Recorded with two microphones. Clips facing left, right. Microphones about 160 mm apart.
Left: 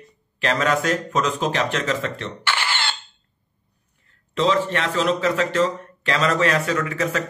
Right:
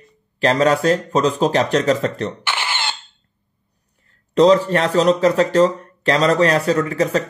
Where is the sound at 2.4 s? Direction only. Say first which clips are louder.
Right 1 dB; 15° right (ahead or behind).